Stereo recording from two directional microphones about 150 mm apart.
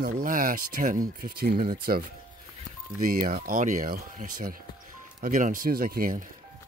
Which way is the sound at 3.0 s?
70° right (ahead or behind).